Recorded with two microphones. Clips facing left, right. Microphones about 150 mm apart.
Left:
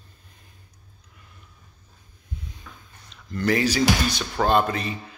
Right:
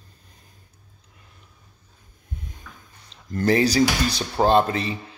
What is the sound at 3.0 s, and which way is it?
Speech, 35° right (ahead or behind).